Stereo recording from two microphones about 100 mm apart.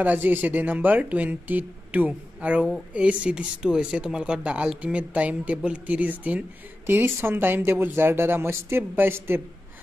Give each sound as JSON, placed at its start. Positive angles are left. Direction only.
{"t": 0.0, "sound": "speech", "side_deg": -15}